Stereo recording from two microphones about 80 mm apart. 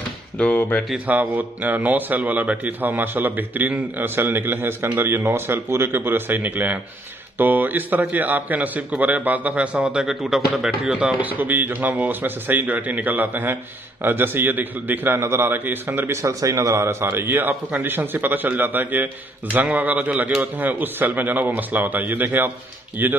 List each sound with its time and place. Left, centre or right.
0.4 s speech: centre
0.9 s a man's voice: right
9.8 s a man's voice: centre; by 16.2 s right
16.2 s a man's voice: right